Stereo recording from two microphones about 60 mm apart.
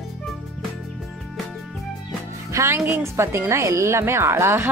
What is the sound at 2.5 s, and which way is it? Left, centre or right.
Music, right.